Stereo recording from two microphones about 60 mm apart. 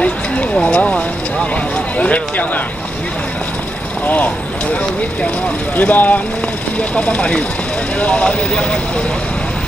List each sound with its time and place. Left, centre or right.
0.0 s a sound: centre
2.0 s speech: left
4.0 s speech: left
5.8 s speech: left